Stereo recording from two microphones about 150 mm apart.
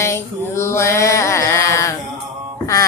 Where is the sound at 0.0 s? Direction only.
15° left (ahead or behind).